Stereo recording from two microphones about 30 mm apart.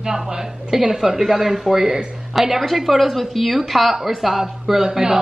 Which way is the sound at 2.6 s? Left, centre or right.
Centre.